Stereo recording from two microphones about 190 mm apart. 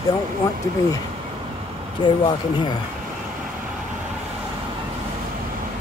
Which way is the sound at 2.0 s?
25° left (ahead or behind).